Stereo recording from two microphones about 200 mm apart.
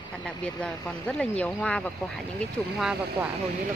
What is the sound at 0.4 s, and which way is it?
Speech, 5° left (ahead or behind).